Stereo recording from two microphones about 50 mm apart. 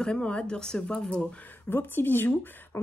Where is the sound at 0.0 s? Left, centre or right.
Centre.